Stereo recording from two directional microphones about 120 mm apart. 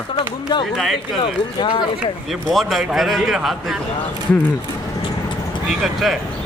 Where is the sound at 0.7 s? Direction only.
Centre (ahead or behind).